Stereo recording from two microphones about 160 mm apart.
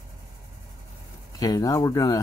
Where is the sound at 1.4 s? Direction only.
20° left (ahead or behind).